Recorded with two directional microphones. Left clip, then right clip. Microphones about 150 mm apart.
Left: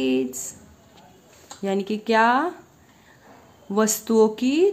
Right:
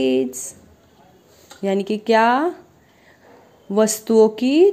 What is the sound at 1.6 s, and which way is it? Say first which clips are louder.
Speech: right 4 dB; 25° right (ahead or behind).